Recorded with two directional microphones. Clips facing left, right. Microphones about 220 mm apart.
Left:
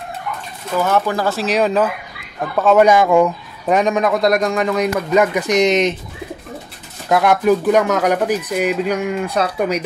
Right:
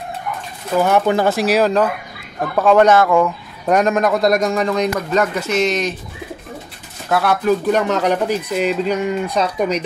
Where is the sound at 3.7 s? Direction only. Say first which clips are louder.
Even; centre (ahead or behind); by 6.0 s 20° left (ahead or behind).